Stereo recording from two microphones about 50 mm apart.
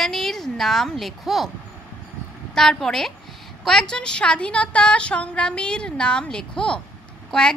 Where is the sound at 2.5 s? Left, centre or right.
Centre.